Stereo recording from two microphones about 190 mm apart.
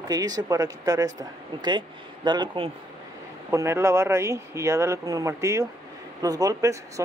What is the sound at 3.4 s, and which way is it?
Speech, 15° right (ahead or behind).